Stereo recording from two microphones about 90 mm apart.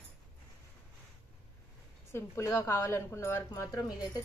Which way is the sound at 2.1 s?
30° left (ahead or behind).